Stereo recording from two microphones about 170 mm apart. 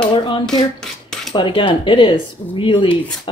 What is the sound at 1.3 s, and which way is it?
Speech, 30° left (ahead or behind).